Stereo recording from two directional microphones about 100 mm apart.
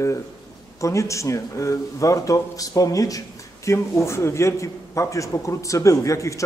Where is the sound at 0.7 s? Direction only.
30° left (ahead or behind).